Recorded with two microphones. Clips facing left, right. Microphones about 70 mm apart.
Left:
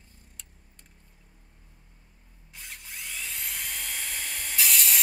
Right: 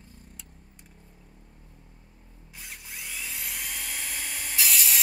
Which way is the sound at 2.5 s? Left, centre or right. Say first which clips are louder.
Even; centre.